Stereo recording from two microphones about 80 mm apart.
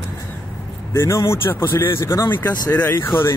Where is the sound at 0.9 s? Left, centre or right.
Left.